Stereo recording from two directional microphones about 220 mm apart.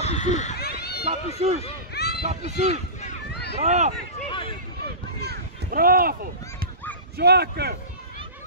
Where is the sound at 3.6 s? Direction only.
30° right (ahead or behind).